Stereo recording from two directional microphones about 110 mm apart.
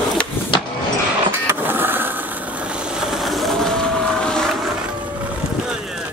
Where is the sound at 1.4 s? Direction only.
20° right (ahead or behind); by 4.8 s centre (ahead or behind).